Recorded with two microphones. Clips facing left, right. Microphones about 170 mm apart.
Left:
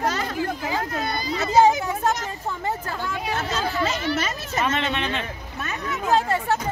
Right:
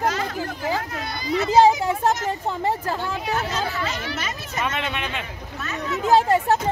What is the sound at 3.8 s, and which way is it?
Speech, 30° left (ahead or behind).